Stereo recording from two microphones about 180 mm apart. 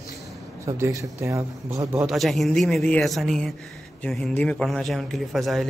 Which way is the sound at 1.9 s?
Centre (ahead or behind).